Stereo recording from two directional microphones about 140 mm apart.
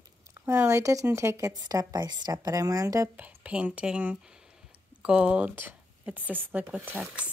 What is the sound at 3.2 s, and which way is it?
Speech, 10° right (ahead or behind).